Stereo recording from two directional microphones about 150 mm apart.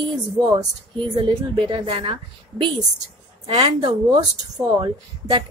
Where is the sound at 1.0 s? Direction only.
35° right (ahead or behind).